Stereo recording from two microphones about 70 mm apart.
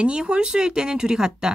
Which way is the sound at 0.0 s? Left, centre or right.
Centre.